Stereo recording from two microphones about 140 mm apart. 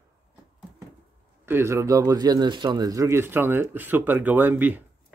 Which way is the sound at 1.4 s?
20° right (ahead or behind).